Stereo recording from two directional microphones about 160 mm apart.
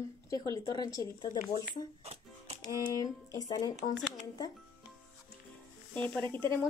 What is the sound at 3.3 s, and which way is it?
Speech, 25° left (ahead or behind).